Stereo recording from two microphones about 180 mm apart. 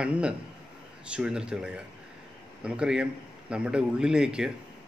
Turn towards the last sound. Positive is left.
turn(degrees=-5)  # may be behind; listen again after turning